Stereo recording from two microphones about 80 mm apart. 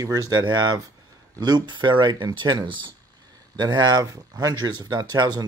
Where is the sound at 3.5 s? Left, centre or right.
Right.